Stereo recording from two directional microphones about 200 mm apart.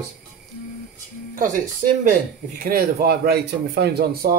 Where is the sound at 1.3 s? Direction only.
40° right (ahead or behind).